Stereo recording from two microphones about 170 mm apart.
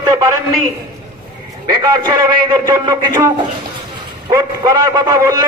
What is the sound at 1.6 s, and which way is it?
A man's voice, 25° right (ahead or behind).